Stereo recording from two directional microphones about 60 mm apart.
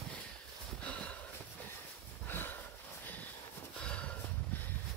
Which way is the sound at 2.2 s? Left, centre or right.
Left.